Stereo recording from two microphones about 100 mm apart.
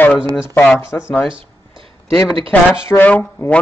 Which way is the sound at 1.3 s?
55° right (ahead or behind).